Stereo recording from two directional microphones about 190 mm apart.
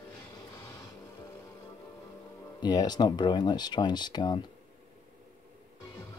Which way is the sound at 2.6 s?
20° left (ahead or behind).